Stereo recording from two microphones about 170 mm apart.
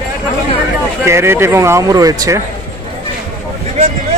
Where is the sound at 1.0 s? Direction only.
15° right (ahead or behind).